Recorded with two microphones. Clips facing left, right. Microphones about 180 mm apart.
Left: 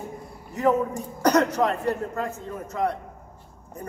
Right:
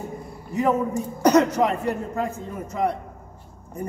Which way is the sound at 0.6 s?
10° right (ahead or behind).